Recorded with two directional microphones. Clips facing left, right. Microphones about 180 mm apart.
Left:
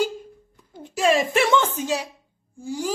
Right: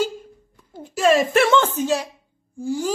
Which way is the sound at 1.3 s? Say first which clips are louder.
Right 3 dB; 15° left (ahead or behind).